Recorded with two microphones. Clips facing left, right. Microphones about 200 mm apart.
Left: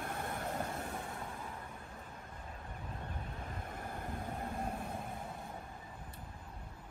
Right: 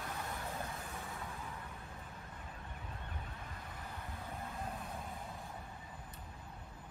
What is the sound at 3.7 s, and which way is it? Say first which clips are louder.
Vehicle: left 6 dB; 50° left (ahead or behind).